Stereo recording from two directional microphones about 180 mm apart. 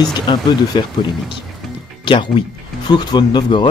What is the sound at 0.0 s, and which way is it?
Speech, 25° left (ahead or behind).